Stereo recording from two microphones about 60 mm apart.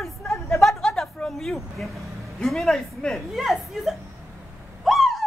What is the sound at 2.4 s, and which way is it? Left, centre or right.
Speech, centre.